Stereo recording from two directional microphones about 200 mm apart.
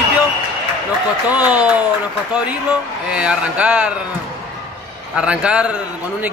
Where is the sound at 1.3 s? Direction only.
5° right (ahead or behind).